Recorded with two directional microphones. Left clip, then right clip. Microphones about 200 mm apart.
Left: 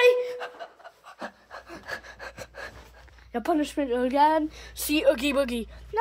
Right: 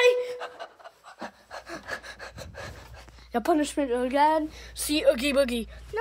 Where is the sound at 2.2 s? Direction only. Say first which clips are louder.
Left 1 dB; 10° left (ahead or behind).